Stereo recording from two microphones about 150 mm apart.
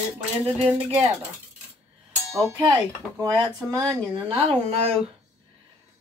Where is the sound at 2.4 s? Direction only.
30° right (ahead or behind).